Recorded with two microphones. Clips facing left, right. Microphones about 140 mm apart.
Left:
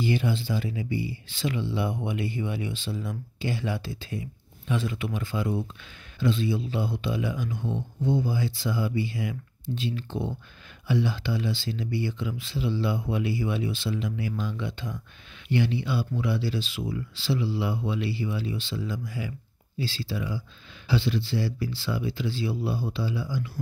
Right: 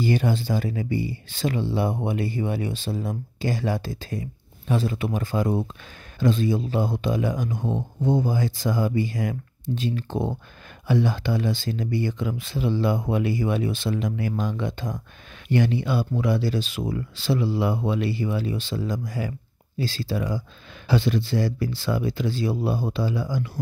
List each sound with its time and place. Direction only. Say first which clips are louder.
0.0 s speech: right 3 dB; 40° right (ahead or behind)